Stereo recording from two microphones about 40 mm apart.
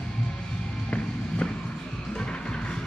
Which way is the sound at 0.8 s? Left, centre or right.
Left.